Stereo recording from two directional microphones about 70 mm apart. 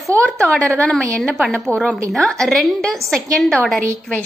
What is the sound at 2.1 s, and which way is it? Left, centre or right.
A woman's voice, centre.